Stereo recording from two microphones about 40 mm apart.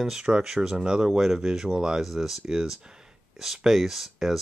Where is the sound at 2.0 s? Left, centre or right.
Centre.